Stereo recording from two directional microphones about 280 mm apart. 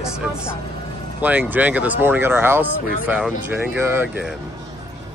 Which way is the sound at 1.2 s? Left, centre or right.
Centre.